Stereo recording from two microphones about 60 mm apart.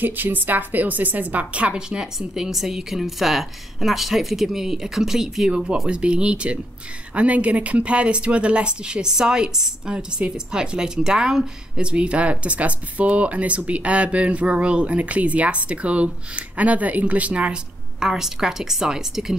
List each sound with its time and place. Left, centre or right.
0.0 s a woman's voice: right; by 5.5 s centre
5.5 s a woman's voice: centre
18.0 s a woman's voice: centre